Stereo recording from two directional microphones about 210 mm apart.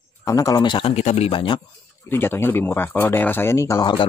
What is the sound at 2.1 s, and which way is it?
Speech, 10° left (ahead or behind).